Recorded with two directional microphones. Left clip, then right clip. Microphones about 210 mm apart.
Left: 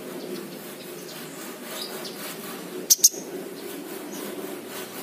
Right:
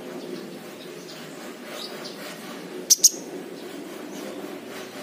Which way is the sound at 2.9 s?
Centre (ahead or behind).